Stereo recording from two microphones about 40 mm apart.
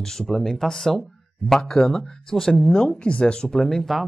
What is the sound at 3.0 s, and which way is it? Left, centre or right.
Speech, left.